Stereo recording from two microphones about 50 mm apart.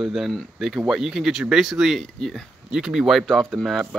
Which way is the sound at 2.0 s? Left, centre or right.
Centre.